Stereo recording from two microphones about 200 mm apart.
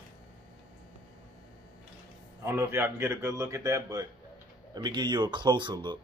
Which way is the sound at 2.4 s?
15° right (ahead or behind).